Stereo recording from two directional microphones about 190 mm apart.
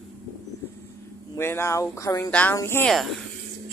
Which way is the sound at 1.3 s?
15° left (ahead or behind).